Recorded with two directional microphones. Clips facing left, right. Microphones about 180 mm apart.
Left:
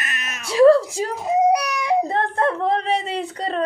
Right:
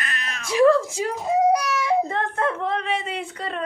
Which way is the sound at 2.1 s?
35° left (ahead or behind).